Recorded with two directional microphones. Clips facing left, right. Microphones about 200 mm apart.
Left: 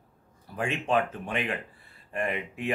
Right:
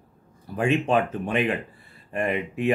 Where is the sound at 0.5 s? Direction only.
20° right (ahead or behind).